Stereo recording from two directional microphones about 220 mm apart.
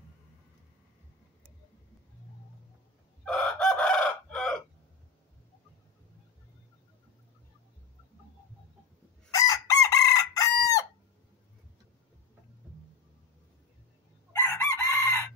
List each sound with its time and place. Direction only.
3.3 s chicken: 5° left (ahead or behind)
9.3 s chicken: 15° left (ahead or behind)
14.3 s chicken: 10° left (ahead or behind)